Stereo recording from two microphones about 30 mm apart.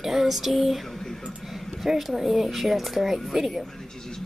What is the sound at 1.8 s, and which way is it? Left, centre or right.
Speech, centre.